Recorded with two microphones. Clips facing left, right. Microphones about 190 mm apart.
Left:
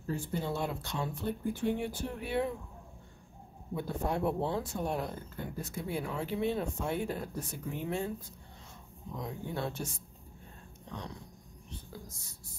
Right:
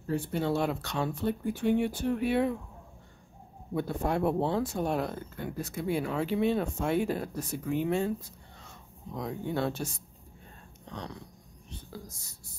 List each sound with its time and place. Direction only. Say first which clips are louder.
0.1 s speech: right 5 dB; 70° right (ahead or behind)
3.7 s speech: right 4 dB; 75° right (ahead or behind)
9.2 s speech: right 6 dB; 75° right (ahead or behind)